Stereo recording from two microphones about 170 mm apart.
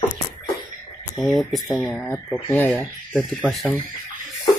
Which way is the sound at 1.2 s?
Centre (ahead or behind).